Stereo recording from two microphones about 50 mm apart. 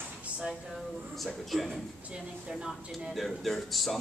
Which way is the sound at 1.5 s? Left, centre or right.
Centre.